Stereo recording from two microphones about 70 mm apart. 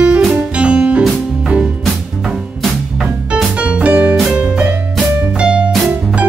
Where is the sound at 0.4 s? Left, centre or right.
Centre.